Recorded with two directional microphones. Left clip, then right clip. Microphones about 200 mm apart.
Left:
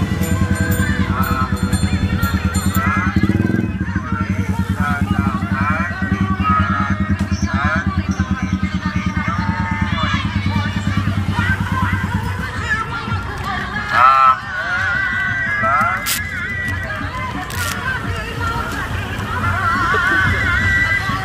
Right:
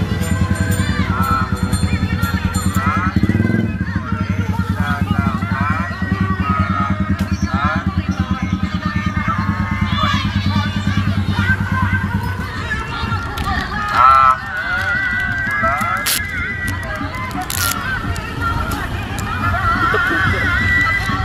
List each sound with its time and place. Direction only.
13.9 s honk: 65° left (ahead or behind)
14.7 s neigh: 35° left (ahead or behind)
19.7 s music: 35° left (ahead or behind)